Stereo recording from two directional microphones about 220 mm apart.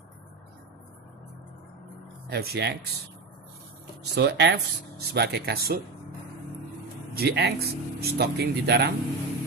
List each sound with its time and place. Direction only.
2.2 s speech: 45° right (ahead or behind)
4.0 s speech: 50° right (ahead or behind)
7.2 s speech: 50° right (ahead or behind)